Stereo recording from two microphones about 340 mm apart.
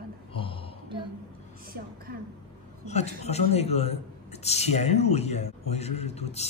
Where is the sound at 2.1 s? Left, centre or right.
Right.